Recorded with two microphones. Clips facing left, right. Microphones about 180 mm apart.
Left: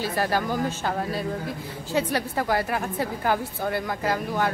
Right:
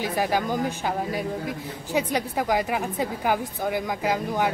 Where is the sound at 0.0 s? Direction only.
15° right (ahead or behind).